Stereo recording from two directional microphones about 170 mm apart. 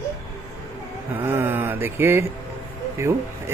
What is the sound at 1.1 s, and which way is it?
Speech, 10° right (ahead or behind).